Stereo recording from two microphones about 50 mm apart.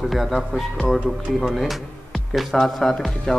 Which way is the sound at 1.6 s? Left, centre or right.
Centre.